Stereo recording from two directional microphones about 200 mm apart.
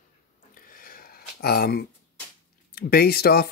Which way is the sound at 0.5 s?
45° left (ahead or behind).